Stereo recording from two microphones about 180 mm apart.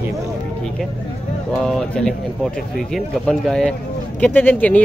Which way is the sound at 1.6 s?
5° left (ahead or behind).